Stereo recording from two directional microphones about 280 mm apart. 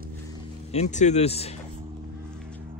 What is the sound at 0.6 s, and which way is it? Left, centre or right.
Speech, left.